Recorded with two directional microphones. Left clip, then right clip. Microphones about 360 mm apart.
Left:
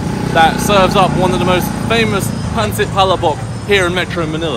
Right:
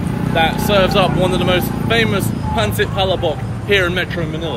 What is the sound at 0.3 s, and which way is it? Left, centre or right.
Speech, centre.